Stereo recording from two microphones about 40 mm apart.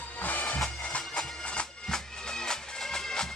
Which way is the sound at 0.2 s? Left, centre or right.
Left.